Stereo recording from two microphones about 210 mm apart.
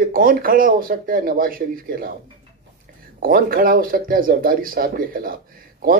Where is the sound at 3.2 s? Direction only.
45° right (ahead or behind).